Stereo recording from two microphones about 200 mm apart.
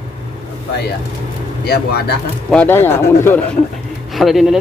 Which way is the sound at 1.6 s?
55° left (ahead or behind).